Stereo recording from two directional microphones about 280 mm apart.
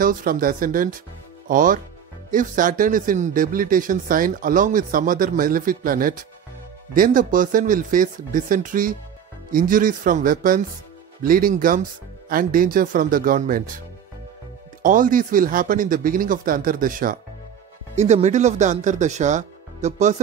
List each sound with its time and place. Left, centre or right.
0.0 s speech: right
14.8 s speech: right